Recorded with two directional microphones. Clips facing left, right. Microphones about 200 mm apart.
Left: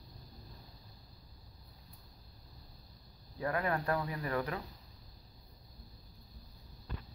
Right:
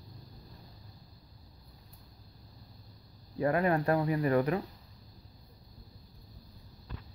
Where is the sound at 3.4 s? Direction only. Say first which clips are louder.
Right 7 dB; 25° right (ahead or behind).